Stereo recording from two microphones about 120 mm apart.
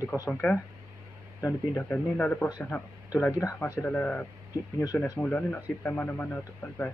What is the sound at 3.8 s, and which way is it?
Speech, 10° left (ahead or behind).